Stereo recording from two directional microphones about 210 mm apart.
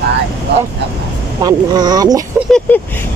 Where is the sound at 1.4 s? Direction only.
20° right (ahead or behind).